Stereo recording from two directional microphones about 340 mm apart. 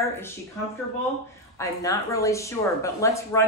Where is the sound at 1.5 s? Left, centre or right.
Centre.